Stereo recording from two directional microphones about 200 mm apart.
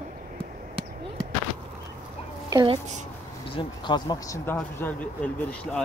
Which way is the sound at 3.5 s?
20° left (ahead or behind).